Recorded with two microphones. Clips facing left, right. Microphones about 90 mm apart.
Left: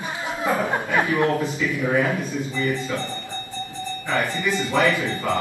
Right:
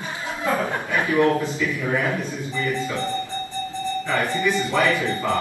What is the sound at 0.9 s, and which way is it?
Speech, 20° left (ahead or behind).